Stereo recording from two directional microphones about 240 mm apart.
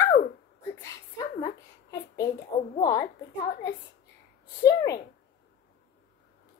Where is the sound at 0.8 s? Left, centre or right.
Centre.